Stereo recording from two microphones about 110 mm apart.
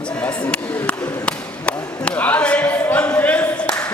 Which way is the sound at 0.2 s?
10° left (ahead or behind).